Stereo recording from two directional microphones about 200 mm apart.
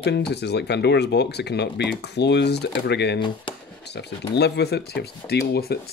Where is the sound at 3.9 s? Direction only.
55° left (ahead or behind).